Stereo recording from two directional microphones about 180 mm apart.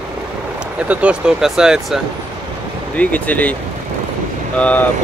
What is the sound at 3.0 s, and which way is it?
Speech, 10° left (ahead or behind).